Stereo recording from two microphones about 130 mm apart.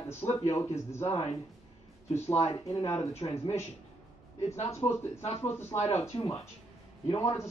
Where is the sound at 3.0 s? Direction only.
50° left (ahead or behind).